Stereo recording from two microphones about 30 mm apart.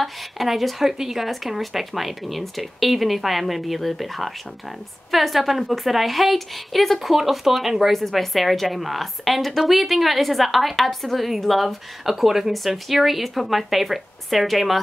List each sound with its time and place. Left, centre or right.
0.0 s a woman's voice: centre
7.0 s speech: centre
7.9 s a woman's voice: centre